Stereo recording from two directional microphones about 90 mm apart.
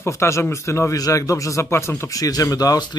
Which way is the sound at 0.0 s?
30° left (ahead or behind).